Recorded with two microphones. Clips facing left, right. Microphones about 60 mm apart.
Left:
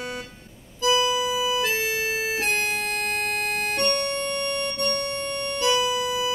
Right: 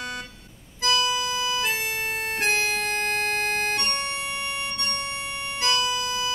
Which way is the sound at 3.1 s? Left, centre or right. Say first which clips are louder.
Right 1 dB; right.